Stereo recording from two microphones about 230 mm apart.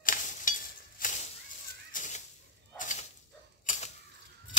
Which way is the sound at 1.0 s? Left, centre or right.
Left.